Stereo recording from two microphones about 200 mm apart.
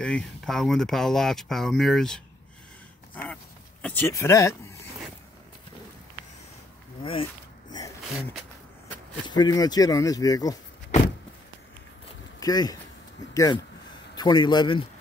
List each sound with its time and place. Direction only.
0.0 s speech: 5° left (ahead or behind)
3.8 s speech: 10° left (ahead or behind)
7.0 s speech: 25° left (ahead or behind)
9.3 s speech: 20° left (ahead or behind)
12.4 s speech: 20° left (ahead or behind)